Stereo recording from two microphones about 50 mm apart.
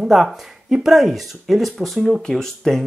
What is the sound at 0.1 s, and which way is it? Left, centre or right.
Speech, centre.